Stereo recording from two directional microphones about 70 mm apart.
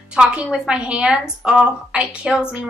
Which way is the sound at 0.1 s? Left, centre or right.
Centre.